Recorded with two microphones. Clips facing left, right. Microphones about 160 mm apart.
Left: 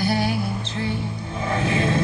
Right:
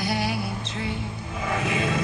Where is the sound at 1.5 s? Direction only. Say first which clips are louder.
Left 4 dB; 30° left (ahead or behind).